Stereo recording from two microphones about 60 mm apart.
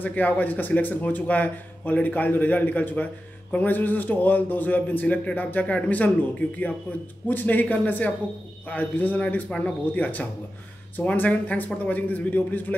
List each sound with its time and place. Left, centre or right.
0.0 s a man's voice: left
9.5 s a man's voice: centre